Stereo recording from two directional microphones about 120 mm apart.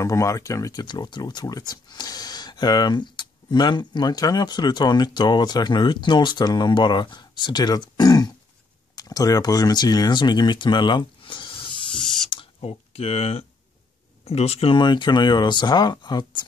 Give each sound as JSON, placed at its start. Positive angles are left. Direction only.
{"t": 0.0, "sound": "speech", "side_deg": 25}
{"t": 12.5, "sound": "speech", "side_deg": 55}